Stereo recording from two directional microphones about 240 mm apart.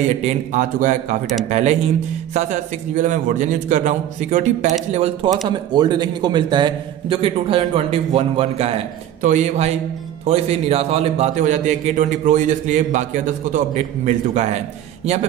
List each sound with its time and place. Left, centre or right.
0.2 s a man's voice: right